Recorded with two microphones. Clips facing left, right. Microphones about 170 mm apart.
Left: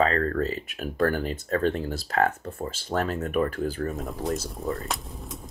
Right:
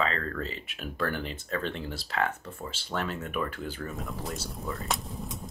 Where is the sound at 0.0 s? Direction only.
45° left (ahead or behind).